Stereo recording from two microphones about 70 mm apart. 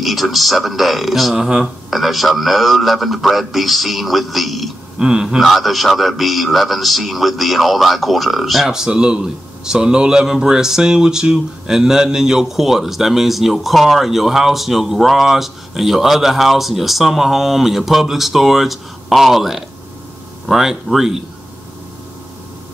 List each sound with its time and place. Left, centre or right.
0.0 s a man's voice: centre